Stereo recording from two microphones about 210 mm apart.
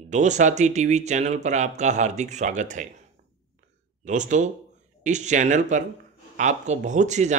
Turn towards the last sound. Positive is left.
turn(degrees=-35)  # may be behind; listen again after turning